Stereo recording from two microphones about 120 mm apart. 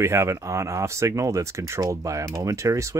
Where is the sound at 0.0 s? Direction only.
25° right (ahead or behind).